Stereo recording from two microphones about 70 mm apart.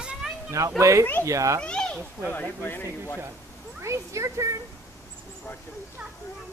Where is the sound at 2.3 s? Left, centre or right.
Left.